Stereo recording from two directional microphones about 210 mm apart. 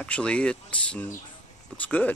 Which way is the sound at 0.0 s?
5° left (ahead or behind).